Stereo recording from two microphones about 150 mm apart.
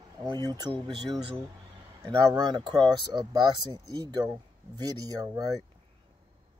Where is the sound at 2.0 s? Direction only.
25° right (ahead or behind).